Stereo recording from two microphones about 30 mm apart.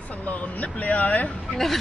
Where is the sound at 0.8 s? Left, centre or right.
Left.